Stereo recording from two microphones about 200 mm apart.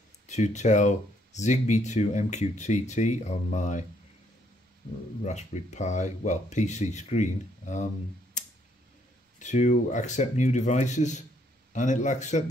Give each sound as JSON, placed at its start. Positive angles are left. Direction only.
{"t": 0.3, "sound": "speech", "side_deg": 35}
{"t": 5.2, "sound": "speech", "side_deg": 35}
{"t": 9.4, "sound": "speech", "side_deg": 35}